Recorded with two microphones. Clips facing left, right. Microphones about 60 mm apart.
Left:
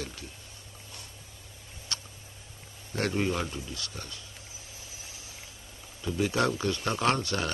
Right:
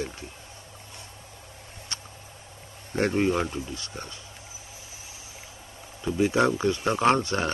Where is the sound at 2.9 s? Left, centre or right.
Right.